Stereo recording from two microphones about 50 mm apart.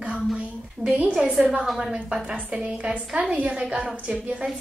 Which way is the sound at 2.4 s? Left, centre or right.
Right.